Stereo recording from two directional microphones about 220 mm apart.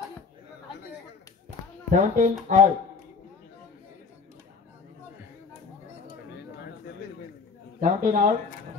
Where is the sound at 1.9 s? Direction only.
35° right (ahead or behind).